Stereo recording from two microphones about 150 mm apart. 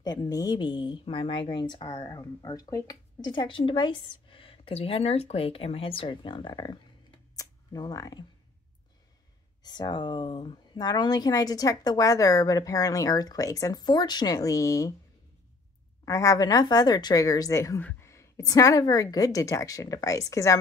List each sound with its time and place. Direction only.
0.0 s speech: 25° left (ahead or behind)
9.6 s speech: 30° left (ahead or behind)
16.1 s speech: 20° left (ahead or behind)